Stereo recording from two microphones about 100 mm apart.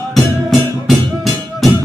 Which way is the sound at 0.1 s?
Centre (ahead or behind).